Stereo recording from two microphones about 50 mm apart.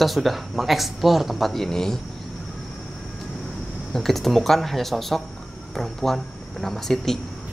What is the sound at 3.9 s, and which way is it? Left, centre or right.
Speech, centre.